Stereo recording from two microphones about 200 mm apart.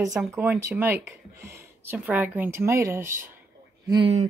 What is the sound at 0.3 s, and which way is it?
Speech, 10° right (ahead or behind).